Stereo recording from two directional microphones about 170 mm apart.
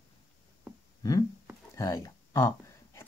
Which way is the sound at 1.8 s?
15° left (ahead or behind).